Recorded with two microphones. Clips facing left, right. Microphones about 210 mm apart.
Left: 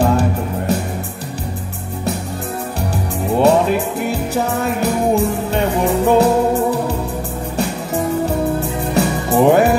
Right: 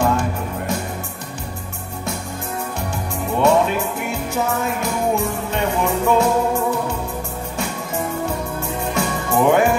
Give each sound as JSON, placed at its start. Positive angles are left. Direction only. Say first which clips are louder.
{"t": 0.0, "sound": "music", "louder": "left 4 dB", "side_deg": 35}
{"t": 3.4, "sound": "music", "louder": "left 2 dB", "side_deg": 35}
{"t": 8.5, "sound": "music", "louder": "left 5 dB", "side_deg": 35}